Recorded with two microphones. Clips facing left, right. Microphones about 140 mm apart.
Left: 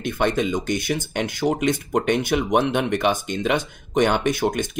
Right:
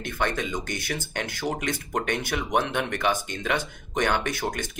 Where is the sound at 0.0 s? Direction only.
20° left (ahead or behind).